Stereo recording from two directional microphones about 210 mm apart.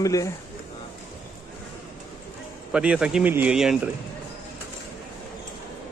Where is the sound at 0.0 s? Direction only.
15° left (ahead or behind).